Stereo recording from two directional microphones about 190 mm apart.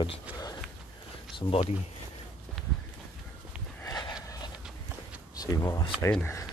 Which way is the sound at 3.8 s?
20° left (ahead or behind).